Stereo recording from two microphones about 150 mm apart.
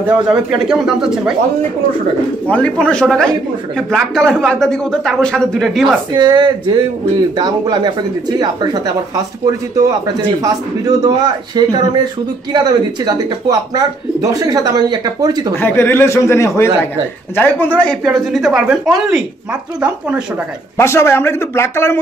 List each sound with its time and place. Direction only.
0.0 s speech: 5° right (ahead or behind)
2.4 s speech: 10° left (ahead or behind)
6.1 s speech: 30° right (ahead or behind)
10.4 s speech: 25° right (ahead or behind)
15.6 s speech: 15° left (ahead or behind)
18.0 s speech: 5° right (ahead or behind)
20.7 s speech: 15° left (ahead or behind)